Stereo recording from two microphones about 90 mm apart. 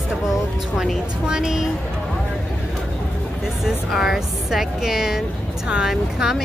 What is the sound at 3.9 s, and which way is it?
Speech, 5° right (ahead or behind).